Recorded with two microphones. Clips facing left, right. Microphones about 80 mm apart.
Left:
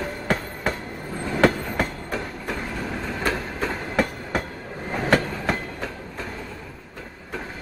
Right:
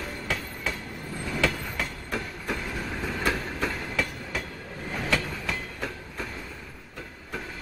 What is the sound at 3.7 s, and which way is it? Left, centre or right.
Train, left.